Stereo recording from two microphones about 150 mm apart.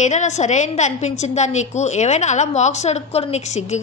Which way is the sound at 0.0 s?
50° left (ahead or behind).